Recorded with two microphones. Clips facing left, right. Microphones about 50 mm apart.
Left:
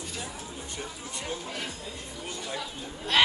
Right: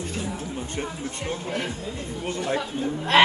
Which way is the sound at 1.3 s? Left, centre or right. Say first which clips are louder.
Right 7 dB; right.